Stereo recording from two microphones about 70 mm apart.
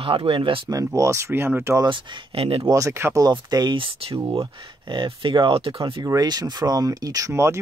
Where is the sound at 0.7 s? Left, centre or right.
Right.